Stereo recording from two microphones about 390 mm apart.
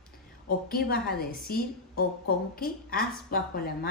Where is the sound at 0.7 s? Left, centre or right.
Left.